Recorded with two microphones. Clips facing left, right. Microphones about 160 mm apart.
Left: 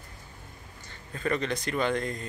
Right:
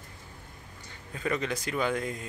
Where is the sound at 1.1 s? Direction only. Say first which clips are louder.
Left 2 dB; 10° right (ahead or behind).